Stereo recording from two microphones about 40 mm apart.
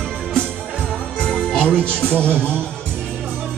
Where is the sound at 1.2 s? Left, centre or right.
Left.